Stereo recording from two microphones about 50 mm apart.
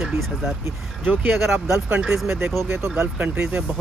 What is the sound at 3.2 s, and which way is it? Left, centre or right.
Speech, right.